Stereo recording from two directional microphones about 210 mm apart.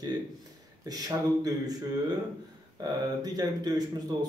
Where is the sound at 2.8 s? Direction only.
20° right (ahead or behind).